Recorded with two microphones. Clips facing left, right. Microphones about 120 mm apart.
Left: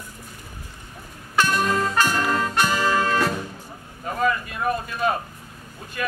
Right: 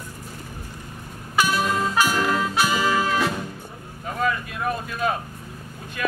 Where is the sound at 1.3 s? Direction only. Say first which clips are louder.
Left 1 dB; 5° right (ahead or behind).